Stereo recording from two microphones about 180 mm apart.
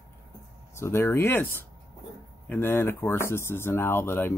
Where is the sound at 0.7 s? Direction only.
15° left (ahead or behind).